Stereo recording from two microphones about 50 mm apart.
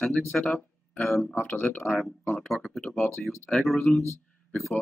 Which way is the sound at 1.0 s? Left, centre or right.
Centre.